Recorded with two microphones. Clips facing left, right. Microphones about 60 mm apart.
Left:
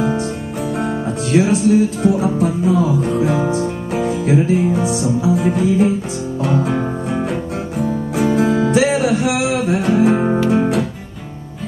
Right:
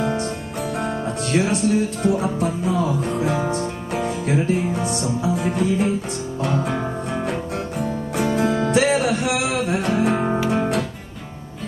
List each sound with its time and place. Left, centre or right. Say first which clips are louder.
0.0 s music: left 4 dB; centre